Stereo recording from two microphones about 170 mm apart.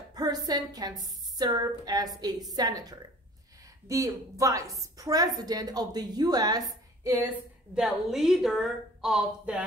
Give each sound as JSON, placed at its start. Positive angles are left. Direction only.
{"t": 0.1, "sound": "a woman's voice", "side_deg": -20}
{"t": 7.7, "sound": "a woman's voice", "side_deg": -5}